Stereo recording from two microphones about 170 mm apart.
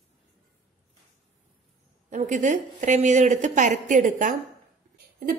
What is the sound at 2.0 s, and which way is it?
Speech, 45° right (ahead or behind).